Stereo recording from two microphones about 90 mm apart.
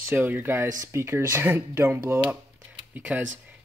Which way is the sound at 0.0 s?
20° right (ahead or behind).